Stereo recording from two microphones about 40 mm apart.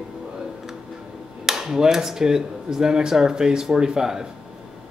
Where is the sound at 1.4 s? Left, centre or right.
Centre.